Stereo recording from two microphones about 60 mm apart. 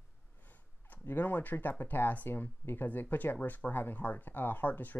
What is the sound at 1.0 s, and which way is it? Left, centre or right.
Speech, left.